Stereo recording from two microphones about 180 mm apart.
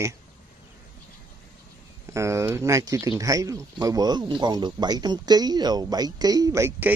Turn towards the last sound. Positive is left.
turn(degrees=-15)  # may be behind; listen again after turning